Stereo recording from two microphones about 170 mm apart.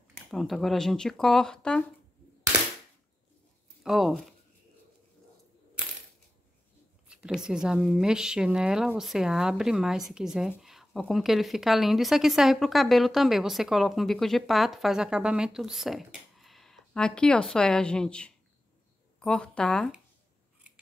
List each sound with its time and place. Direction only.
0.3 s a woman's voice: centre (ahead or behind)
3.8 s speech: centre (ahead or behind)
7.2 s a woman's voice: 5° right (ahead or behind)